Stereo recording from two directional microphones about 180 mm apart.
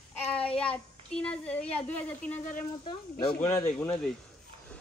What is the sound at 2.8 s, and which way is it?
Speech, 35° left (ahead or behind).